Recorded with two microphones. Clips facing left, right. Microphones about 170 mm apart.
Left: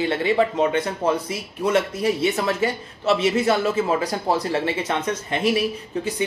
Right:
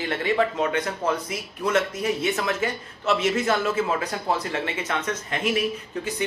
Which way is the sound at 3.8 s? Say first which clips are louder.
Left 4 dB; 35° left (ahead or behind).